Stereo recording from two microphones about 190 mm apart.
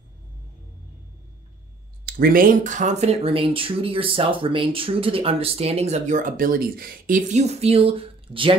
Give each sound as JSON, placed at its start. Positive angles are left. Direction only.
{"t": 2.0, "sound": "speech", "side_deg": -50}